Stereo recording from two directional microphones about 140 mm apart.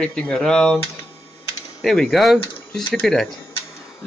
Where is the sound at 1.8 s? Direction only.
Centre (ahead or behind).